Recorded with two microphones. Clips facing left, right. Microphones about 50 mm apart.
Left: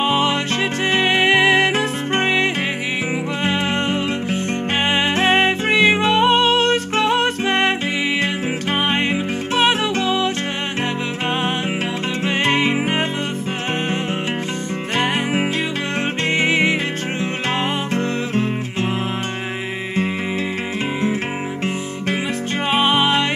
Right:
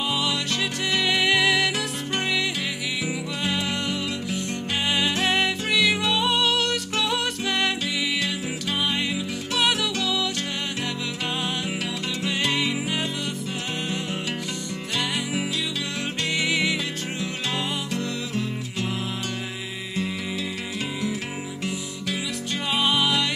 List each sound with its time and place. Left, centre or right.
0.0 s music: left
8.8 s music: left
12.3 s music: left
16.3 s music: left
17.9 s music: left
22.7 s music: left